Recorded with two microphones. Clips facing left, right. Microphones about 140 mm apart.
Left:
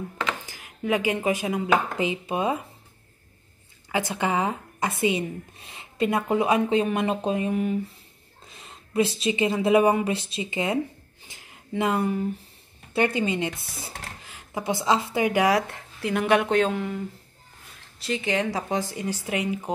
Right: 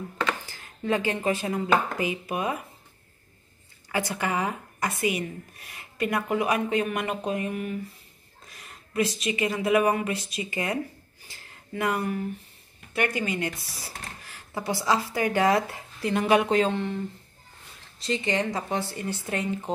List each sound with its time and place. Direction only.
0.2 s speech: 15° left (ahead or behind)
2.0 s speech: 25° left (ahead or behind)
3.9 s speech: 20° left (ahead or behind)
15.5 s speech: centre (ahead or behind)
18.0 s speech: 5° left (ahead or behind)